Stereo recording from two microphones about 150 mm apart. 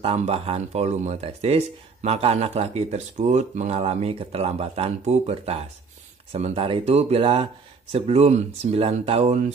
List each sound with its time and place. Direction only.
0.0 s speech: 40° right (ahead or behind)